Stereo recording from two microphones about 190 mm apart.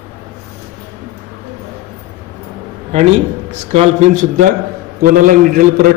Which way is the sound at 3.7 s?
35° right (ahead or behind).